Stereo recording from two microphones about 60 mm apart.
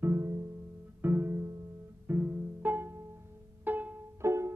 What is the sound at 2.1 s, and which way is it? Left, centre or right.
Music, right.